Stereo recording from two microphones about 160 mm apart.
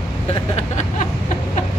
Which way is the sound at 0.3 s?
45° left (ahead or behind).